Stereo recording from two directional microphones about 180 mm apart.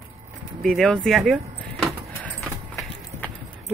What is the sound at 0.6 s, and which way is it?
Speech, centre (ahead or behind).